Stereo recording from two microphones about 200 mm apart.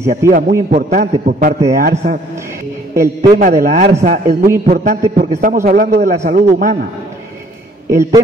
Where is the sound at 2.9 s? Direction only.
15° right (ahead or behind).